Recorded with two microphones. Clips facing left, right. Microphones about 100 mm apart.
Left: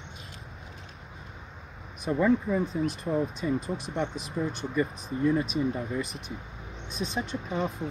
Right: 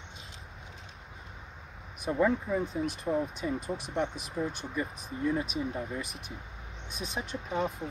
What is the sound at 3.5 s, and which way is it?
Speech, 60° right (ahead or behind).